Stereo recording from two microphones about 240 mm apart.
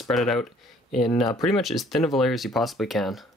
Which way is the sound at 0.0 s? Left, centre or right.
Centre.